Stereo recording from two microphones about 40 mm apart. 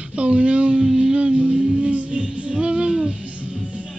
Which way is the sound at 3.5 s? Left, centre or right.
Centre.